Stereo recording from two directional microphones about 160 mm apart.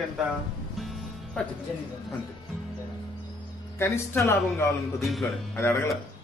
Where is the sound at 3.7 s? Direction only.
15° left (ahead or behind).